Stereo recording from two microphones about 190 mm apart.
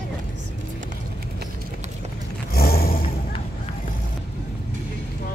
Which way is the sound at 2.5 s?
50° left (ahead or behind).